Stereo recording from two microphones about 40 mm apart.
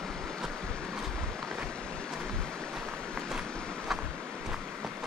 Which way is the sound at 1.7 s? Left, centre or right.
Left.